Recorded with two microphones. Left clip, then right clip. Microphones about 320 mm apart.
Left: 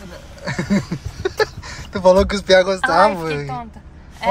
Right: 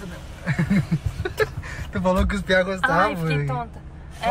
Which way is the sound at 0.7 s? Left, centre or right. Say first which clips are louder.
Left 3 dB; centre.